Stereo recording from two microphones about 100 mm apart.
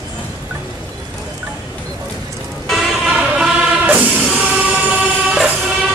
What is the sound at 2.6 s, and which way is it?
Music, 5° right (ahead or behind).